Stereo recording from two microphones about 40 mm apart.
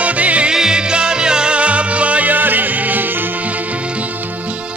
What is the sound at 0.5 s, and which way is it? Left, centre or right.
Music, centre.